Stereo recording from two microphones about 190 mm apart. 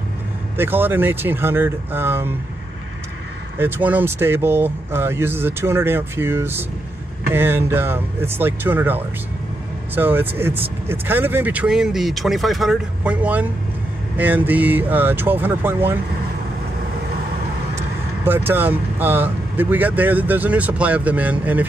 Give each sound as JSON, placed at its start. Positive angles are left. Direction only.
{"t": 0.6, "sound": "speech", "side_deg": -10}
{"t": 3.5, "sound": "speech", "side_deg": -10}
{"t": 18.5, "sound": "speech", "side_deg": -10}